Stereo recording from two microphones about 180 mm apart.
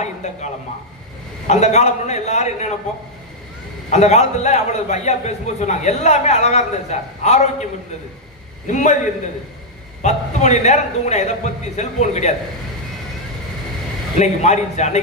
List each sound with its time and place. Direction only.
0.0 s a sound: 40° left (ahead or behind)
1.5 s a man's voice: 40° left (ahead or behind)
3.9 s a man's voice: 40° left (ahead or behind)
8.6 s a man's voice: 40° left (ahead or behind)
10.0 s a man's voice: 40° left (ahead or behind)
14.1 s a man's voice: 40° left (ahead or behind)